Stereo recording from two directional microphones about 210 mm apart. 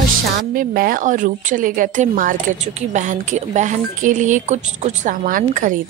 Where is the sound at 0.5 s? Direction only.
40° right (ahead or behind).